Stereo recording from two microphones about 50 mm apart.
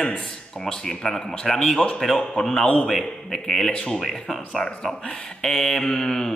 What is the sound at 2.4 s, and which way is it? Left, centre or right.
A man's voice, centre.